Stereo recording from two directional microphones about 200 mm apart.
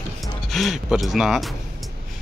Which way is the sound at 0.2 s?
Centre (ahead or behind).